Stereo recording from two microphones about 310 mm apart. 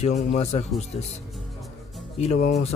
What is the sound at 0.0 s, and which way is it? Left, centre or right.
Speech, left.